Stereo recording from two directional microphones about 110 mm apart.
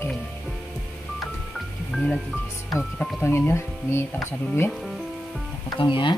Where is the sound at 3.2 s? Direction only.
20° left (ahead or behind).